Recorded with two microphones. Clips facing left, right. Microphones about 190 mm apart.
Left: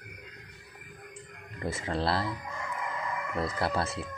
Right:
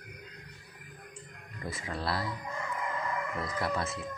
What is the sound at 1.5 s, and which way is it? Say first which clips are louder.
Speech: left 6 dB; 25° left (ahead or behind).